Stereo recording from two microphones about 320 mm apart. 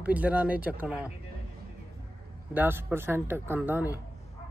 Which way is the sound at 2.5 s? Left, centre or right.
Centre.